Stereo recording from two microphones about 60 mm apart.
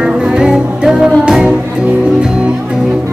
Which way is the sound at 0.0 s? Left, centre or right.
Centre.